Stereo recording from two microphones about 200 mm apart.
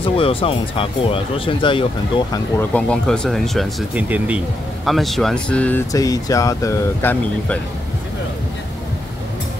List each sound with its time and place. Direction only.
0.0 s speech: 25° left (ahead or behind)
2.7 s speech: 5° left (ahead or behind)